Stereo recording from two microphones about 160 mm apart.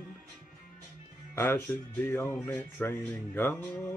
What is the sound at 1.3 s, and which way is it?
Speech, 15° left (ahead or behind).